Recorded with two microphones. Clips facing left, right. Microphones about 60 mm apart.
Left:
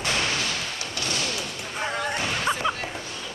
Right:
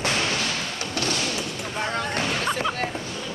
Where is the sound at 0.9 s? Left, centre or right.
Right.